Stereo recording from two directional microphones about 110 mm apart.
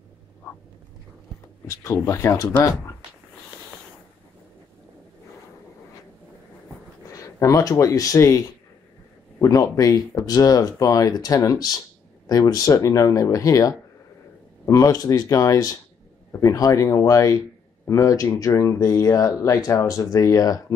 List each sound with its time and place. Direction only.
1.7 s speech: 30° left (ahead or behind)
7.1 s speech: 30° left (ahead or behind)